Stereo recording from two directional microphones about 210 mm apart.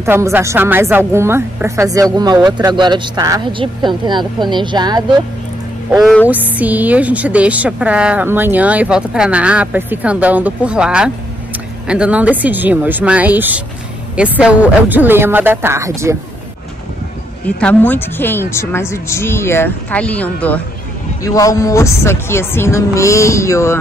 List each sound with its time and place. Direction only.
0.0 s a woman's voice: 10° right (ahead or behind)
5.9 s speech: centre (ahead or behind)
17.5 s speech: 5° left (ahead or behind)